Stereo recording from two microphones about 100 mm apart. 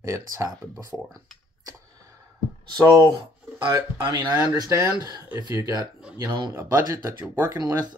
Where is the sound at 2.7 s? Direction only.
35° right (ahead or behind).